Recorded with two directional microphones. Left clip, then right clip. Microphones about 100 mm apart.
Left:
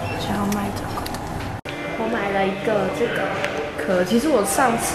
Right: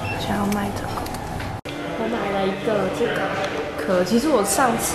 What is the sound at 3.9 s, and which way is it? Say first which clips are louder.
Speech: even; 15° right (ahead or behind).